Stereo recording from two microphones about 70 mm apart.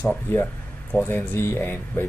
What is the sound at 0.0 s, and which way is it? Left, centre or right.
Speech, left.